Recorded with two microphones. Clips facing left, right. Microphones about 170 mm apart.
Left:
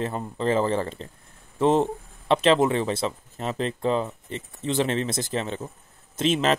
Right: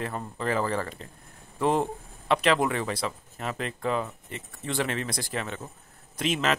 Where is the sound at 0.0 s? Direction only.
25° left (ahead or behind).